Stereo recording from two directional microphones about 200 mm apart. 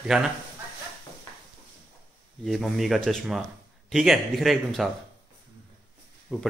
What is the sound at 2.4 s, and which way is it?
A man's voice, centre (ahead or behind).